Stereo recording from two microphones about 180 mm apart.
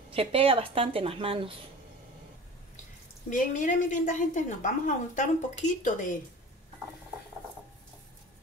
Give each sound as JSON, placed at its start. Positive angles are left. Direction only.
{"t": 0.1, "sound": "a woman's voice", "side_deg": -30}
{"t": 3.3, "sound": "a woman's voice", "side_deg": 45}